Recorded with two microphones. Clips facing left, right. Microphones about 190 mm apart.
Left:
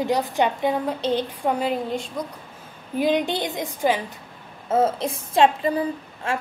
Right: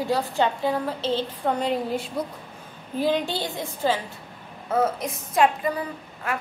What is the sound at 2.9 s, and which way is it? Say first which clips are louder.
A woman's voice: left 3 dB; 20° left (ahead or behind).